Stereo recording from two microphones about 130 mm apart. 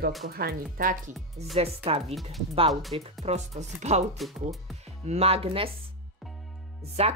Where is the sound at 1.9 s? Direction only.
50° right (ahead or behind).